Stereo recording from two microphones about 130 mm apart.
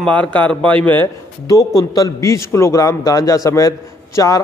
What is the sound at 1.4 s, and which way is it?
A man's voice, 30° left (ahead or behind).